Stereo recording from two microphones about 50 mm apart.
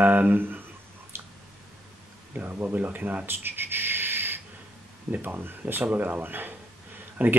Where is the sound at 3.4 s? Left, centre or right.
Right.